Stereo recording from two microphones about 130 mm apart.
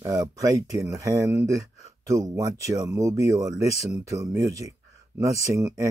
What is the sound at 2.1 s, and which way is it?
Speech, 30° right (ahead or behind).